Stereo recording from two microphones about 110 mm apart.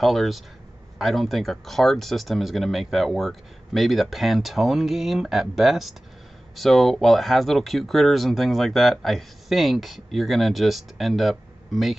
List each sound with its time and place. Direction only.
0.0 s speech: centre (ahead or behind)